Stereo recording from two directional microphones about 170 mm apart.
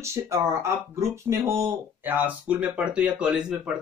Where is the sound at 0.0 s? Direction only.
15° right (ahead or behind).